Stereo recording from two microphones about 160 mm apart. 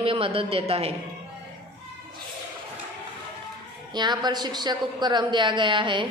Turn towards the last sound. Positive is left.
turn(degrees=-30)  # may be behind; listen again after turning